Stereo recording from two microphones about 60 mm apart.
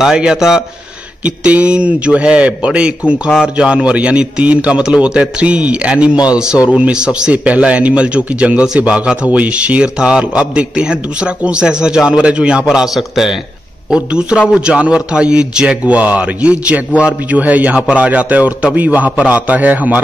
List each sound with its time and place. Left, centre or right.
0.0 s speech: centre
1.2 s a man's voice: right
12.6 s a man's voice: centre; by 20.0 s right